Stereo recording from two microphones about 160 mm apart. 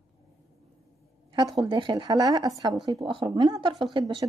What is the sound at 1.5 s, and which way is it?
Speech, 30° right (ahead or behind).